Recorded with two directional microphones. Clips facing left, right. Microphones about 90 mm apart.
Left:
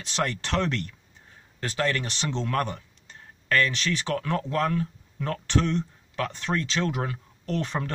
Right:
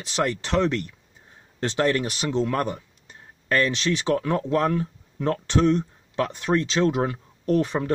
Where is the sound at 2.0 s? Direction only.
10° right (ahead or behind).